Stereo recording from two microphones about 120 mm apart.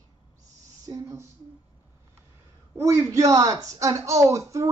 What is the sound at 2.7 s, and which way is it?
Speech, 25° right (ahead or behind).